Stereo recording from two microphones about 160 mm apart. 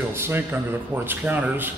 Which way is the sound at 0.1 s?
15° right (ahead or behind).